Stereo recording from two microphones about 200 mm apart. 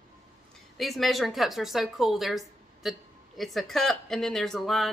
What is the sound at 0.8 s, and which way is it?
Speech, centre (ahead or behind).